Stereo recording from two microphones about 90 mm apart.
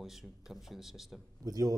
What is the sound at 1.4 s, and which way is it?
Speech, 40° right (ahead or behind).